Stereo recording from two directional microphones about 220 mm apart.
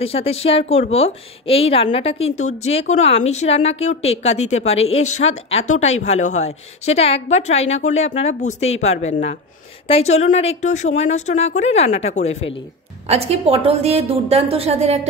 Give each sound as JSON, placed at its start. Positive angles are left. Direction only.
{"t": 0.0, "sound": "a woman's voice", "side_deg": 25}
{"t": 13.1, "sound": "a woman's voice", "side_deg": -30}